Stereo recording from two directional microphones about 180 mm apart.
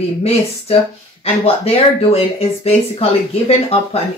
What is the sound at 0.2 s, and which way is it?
Speech, 35° left (ahead or behind).